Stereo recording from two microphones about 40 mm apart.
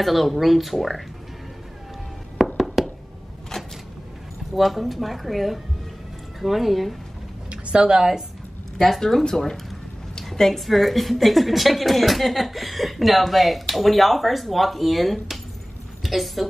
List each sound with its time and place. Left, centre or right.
0.0 s a woman's voice: centre
2.3 s music: centre
3.5 s a sound: centre
4.6 s a woman's voice: centre
7.4 s speech: right
8.7 s a woman's voice: centre